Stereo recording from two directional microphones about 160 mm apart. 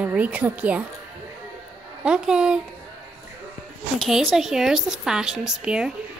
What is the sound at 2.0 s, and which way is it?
Speech, 5° right (ahead or behind).